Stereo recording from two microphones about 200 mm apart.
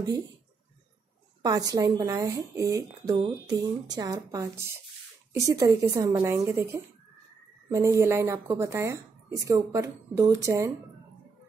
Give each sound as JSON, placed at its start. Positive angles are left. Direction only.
{"t": 1.4, "sound": "speech", "side_deg": -20}